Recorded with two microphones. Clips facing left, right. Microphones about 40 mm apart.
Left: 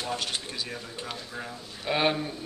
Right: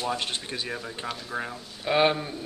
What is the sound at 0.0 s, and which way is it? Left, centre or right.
Speech, right.